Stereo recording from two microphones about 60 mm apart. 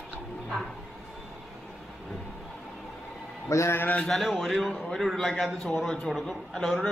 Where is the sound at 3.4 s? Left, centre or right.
Left.